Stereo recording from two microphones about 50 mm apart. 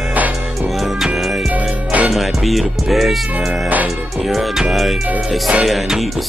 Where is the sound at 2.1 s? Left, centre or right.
Centre.